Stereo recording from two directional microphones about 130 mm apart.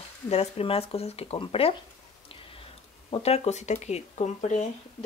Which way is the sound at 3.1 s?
55° left (ahead or behind).